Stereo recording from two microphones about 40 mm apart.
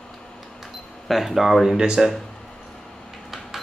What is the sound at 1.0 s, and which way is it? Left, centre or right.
Speech, centre.